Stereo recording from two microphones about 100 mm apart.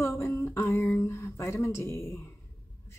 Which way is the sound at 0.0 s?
25° left (ahead or behind).